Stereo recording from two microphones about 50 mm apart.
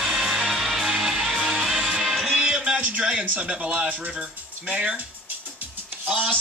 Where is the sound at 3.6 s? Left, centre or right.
Right.